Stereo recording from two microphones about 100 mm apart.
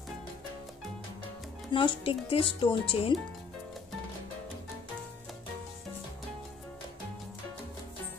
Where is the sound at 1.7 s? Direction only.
60° left (ahead or behind).